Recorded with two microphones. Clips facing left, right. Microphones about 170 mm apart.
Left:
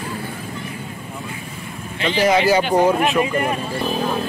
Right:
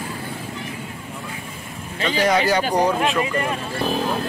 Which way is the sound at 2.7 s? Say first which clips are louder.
Left 3 dB; 25° left (ahead or behind).